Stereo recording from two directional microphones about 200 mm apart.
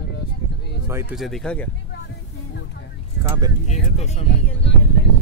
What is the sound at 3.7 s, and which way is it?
Vehicle, 35° left (ahead or behind).